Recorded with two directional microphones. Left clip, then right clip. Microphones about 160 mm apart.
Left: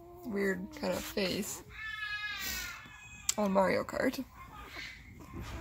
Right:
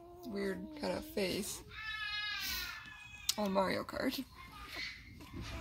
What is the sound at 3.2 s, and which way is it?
Speech, 15° left (ahead or behind).